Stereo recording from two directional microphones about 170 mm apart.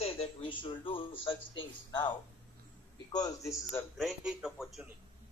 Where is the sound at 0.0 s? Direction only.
35° left (ahead or behind).